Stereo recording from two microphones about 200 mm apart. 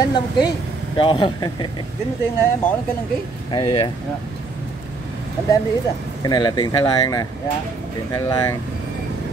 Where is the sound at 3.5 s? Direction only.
25° left (ahead or behind).